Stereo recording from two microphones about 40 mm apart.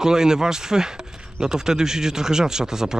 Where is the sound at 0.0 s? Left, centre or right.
Centre.